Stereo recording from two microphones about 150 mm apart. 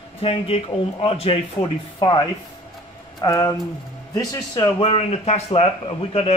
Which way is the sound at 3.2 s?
20° left (ahead or behind).